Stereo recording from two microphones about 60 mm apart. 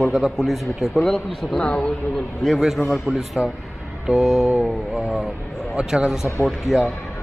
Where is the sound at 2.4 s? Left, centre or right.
Centre.